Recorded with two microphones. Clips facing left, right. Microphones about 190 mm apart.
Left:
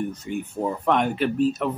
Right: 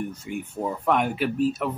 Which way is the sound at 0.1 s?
10° right (ahead or behind).